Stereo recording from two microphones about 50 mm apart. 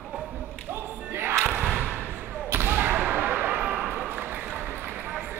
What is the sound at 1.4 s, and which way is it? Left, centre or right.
Crowd, right.